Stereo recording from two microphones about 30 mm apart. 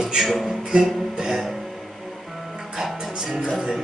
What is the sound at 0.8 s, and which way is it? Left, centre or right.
Music, centre.